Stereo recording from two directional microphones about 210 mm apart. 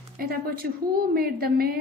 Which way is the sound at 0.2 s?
45° right (ahead or behind).